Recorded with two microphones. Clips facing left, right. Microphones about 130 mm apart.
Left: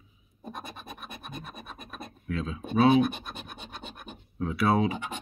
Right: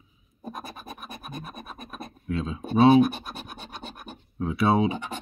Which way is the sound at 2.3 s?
25° right (ahead or behind).